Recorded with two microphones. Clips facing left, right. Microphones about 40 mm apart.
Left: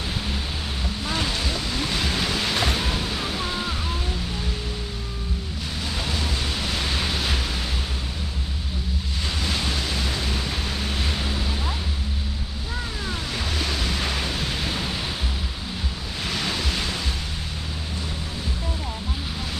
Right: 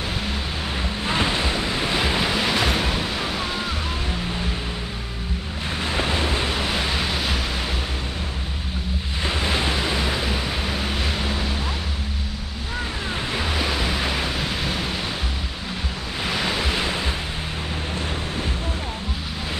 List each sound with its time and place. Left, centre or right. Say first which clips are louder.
1.0 s waves: right 4 dB; right
5.9 s waves: right 6 dB; right; by 7.3 s centre
9.2 s waves: right 5 dB; right
13.3 s waves: right 4 dB; centre
16.3 s waves: right 3 dB; centre